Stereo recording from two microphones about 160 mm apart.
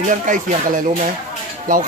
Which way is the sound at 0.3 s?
55° right (ahead or behind).